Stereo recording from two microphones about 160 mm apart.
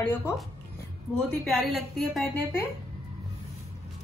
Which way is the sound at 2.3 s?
15° left (ahead or behind).